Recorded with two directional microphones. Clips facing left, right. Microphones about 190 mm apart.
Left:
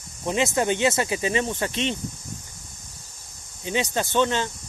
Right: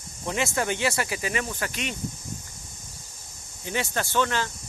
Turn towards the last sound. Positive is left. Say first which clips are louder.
# left 3 dB
turn(degrees=20)  # may be behind; listen again after turning